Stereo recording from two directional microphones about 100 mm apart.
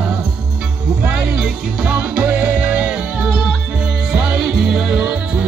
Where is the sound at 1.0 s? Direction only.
10° right (ahead or behind).